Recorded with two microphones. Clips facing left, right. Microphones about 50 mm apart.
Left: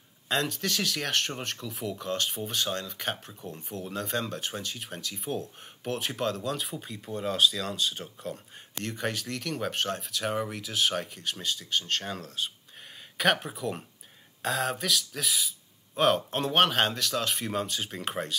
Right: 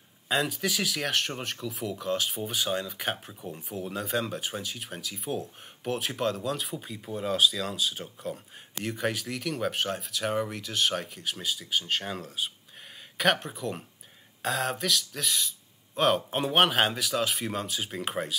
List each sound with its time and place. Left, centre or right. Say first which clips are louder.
0.3 s speech: right 1 dB; centre